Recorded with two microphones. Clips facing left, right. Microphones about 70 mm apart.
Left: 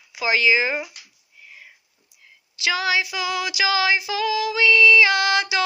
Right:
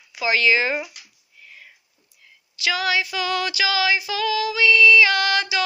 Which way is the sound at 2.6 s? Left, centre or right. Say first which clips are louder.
Even; left.